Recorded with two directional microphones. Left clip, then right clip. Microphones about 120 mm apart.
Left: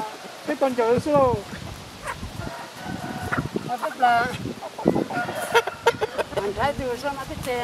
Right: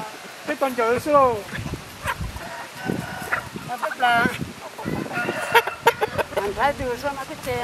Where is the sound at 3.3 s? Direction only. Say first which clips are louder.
Right 2 dB; 45° right (ahead or behind).